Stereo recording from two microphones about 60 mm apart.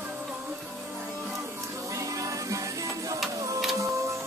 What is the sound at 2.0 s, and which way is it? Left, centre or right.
Music, right.